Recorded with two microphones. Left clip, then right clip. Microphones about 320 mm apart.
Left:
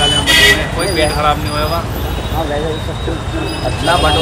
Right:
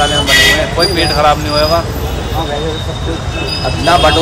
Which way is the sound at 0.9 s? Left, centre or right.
Centre.